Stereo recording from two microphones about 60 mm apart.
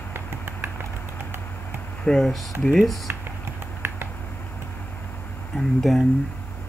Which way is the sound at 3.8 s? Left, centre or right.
Right.